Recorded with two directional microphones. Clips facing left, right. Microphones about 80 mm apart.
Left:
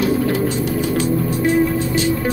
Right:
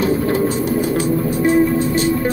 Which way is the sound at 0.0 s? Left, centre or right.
Right.